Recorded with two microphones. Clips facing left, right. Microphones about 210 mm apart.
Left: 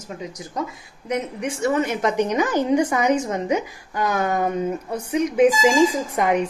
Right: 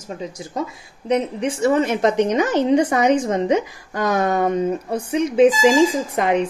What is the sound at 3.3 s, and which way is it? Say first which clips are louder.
A woman's voice: right 4 dB; 35° right (ahead or behind).